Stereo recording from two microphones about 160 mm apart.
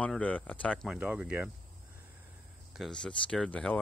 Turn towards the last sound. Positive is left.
turn(degrees=5)  # may be behind; listen again after turning